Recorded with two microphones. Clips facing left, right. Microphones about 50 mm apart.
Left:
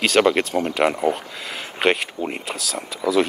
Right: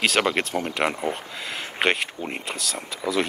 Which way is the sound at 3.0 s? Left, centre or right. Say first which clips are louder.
Left 6 dB; centre.